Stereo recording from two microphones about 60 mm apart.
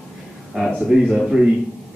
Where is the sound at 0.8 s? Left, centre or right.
Centre.